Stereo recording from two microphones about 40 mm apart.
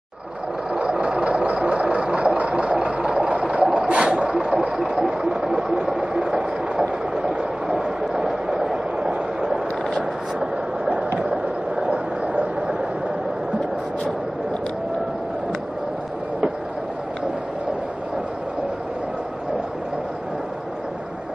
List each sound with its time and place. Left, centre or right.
0.8 s vehicle: right
3.9 s a sound: right
11.8 s vehicle: right